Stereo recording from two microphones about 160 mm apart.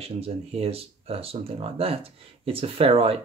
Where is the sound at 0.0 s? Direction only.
40° right (ahead or behind).